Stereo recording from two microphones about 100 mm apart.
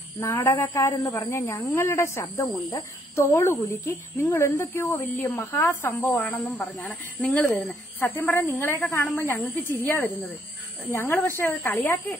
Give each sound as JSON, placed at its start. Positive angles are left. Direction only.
{"t": 0.2, "sound": "speech", "side_deg": 20}